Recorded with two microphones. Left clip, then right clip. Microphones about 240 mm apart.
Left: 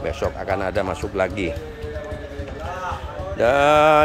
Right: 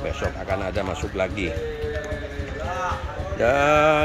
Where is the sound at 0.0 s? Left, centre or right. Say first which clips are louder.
Left 3 dB; centre.